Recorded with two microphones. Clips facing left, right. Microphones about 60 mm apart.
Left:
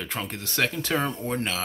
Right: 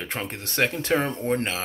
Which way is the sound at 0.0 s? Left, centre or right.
Right.